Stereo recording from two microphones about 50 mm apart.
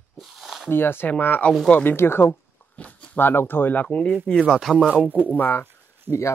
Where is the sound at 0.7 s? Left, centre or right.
Left.